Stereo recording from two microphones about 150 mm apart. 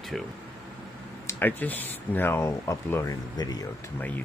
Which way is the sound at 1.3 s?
10° left (ahead or behind).